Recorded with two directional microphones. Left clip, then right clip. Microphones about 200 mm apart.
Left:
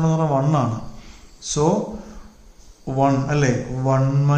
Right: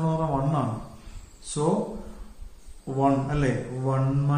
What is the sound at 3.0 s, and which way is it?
A man's voice, 40° left (ahead or behind).